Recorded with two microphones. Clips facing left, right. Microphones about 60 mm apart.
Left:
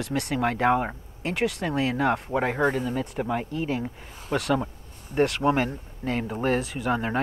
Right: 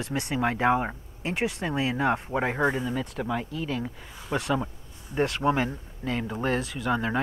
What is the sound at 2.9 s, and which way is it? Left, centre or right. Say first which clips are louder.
Speech: left 2 dB; centre.